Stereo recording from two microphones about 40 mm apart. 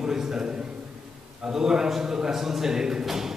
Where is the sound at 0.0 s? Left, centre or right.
Centre.